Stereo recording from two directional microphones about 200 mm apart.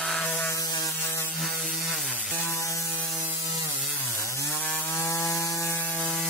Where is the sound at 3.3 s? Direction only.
15° right (ahead or behind).